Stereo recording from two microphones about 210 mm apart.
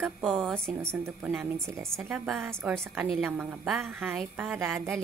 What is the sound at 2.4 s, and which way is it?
A woman's voice, 10° right (ahead or behind).